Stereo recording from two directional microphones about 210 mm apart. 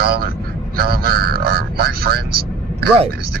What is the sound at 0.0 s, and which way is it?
A man's voice, 45° right (ahead or behind).